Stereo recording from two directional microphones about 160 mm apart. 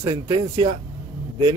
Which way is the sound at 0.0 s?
20° right (ahead or behind).